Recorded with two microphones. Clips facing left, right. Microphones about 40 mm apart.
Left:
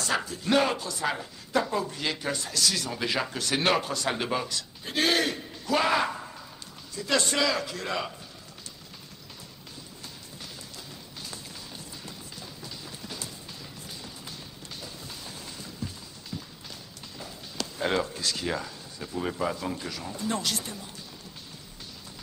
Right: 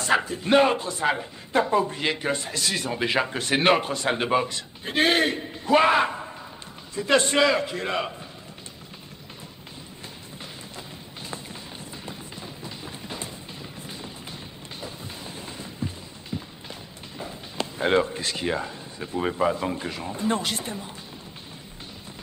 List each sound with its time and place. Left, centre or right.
0.0 s speech: right
12.1 s music: right
14.8 s a sound: right
17.2 s speech: right